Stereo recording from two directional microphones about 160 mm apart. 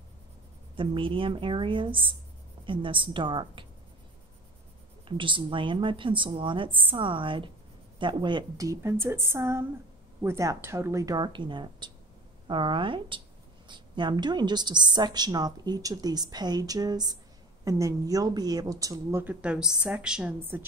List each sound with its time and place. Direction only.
0.7 s a woman's voice: 35° right (ahead or behind)
5.0 s a woman's voice: 30° right (ahead or behind); by 20.6 s 10° right (ahead or behind)